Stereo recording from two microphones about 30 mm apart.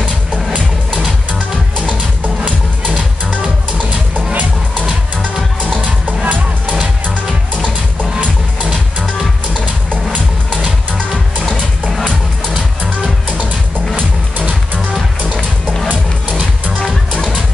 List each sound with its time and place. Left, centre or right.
5.8 s music: right
15.9 s music: right